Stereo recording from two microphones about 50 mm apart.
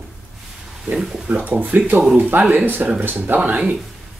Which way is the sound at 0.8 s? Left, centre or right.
Right.